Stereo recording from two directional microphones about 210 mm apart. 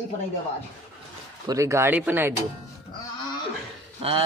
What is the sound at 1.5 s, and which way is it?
Speech, 15° right (ahead or behind).